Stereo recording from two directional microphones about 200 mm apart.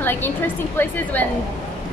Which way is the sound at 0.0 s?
10° left (ahead or behind).